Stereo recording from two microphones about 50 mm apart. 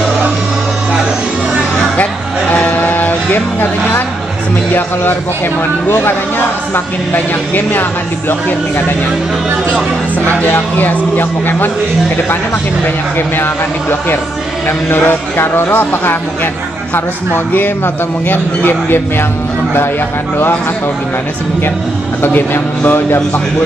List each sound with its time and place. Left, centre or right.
2.5 s a sound: left
5.9 s a man's voice: left
10.8 s speech: left
13.4 s a man's voice: left
22.2 s a man's voice: left